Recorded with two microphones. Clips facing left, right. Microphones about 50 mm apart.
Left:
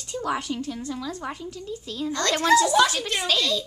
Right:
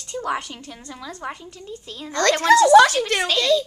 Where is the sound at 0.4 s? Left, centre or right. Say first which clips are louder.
Left 6 dB; centre.